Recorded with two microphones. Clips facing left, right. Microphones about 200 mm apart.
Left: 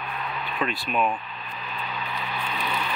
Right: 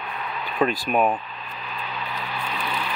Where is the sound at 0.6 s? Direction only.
40° right (ahead or behind).